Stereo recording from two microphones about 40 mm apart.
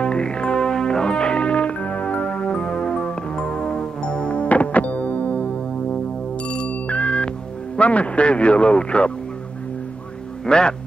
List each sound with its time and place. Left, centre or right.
0.0 s music: left
4.4 s music: left
6.5 s ringtone: left
7.7 s speech: left
10.4 s a man's voice: left